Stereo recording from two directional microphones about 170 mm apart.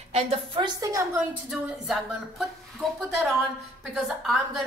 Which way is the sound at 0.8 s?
20° right (ahead or behind).